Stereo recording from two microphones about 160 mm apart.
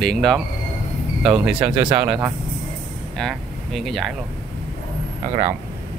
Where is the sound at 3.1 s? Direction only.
Centre (ahead or behind).